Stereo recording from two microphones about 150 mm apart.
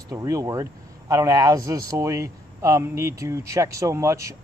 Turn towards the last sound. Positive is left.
turn(degrees=-20)  # may be behind; listen again after turning